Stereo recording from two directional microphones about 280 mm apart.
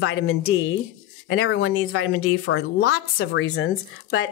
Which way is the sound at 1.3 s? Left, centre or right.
Left.